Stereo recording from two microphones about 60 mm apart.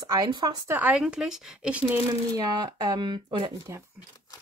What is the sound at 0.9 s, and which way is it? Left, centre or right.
Speech, centre.